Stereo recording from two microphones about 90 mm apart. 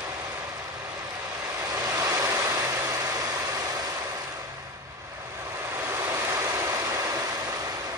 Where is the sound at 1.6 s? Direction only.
40° right (ahead or behind).